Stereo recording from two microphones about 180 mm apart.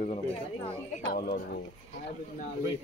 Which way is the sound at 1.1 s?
55° left (ahead or behind).